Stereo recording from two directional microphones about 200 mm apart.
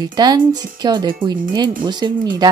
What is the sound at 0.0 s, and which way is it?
Speech, 20° right (ahead or behind).